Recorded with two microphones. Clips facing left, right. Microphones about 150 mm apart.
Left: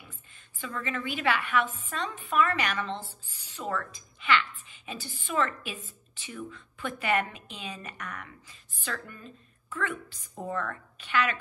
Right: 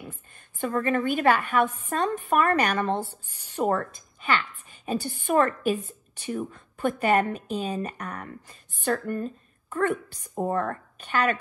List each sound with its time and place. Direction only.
0.6 s a woman's voice: 50° right (ahead or behind)